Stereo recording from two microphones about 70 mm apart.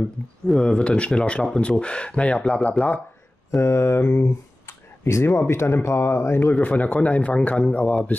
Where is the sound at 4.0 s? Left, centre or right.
Left.